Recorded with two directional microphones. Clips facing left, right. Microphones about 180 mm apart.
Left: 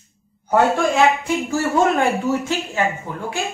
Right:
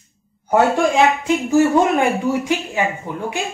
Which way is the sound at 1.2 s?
15° right (ahead or behind).